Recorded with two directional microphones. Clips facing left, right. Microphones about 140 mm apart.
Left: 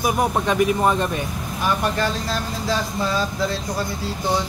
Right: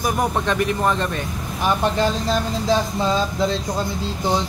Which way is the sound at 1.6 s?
20° right (ahead or behind).